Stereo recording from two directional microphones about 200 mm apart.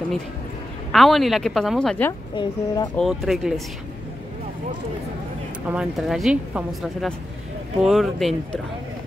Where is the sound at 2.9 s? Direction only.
Centre (ahead or behind).